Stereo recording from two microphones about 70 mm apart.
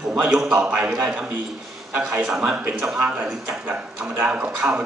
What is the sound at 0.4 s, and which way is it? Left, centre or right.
A man's voice, centre.